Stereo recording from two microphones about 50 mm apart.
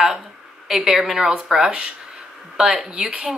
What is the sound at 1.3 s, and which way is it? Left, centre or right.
Speech, centre.